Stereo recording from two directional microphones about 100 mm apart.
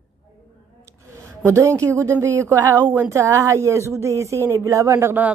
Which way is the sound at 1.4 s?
30° right (ahead or behind).